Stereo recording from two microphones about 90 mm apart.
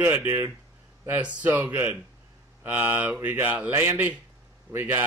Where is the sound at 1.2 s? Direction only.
15° right (ahead or behind).